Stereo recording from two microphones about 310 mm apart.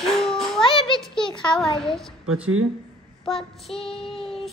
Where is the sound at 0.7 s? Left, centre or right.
Centre.